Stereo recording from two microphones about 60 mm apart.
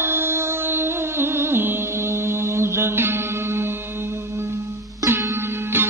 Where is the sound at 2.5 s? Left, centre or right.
Right.